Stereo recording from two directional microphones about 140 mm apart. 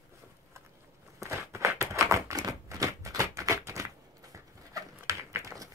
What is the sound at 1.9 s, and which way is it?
Typewriter, 20° right (ahead or behind).